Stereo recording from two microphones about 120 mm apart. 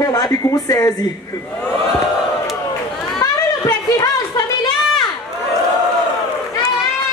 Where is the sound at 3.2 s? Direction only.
30° left (ahead or behind).